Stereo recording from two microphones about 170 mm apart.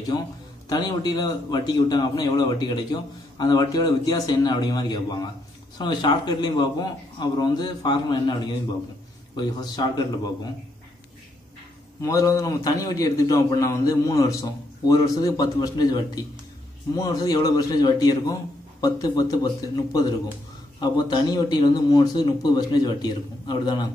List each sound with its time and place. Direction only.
0.1 s a man's voice: 25° left (ahead or behind)
9.4 s a man's voice: 25° left (ahead or behind)
12.0 s a man's voice: 20° left (ahead or behind)